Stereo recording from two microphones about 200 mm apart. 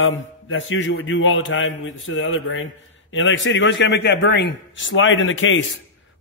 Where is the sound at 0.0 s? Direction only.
85° left.